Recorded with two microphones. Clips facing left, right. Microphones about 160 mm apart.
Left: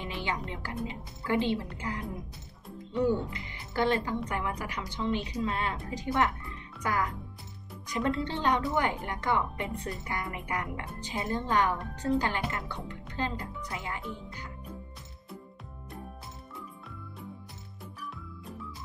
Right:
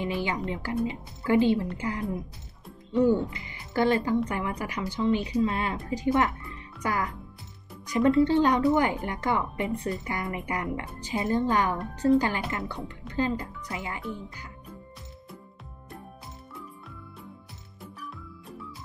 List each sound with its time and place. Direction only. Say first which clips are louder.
0.2 s a woman's voice: right 5 dB; 5° right (ahead or behind)
3.7 s a woman's voice: right 5 dB; 5° right (ahead or behind)
4.5 s speech: right 3 dB; 20° right (ahead or behind)
4.7 s a woman's voice: right 8 dB; 5° right (ahead or behind)